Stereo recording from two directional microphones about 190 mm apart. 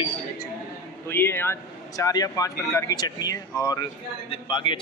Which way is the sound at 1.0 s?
10° left (ahead or behind).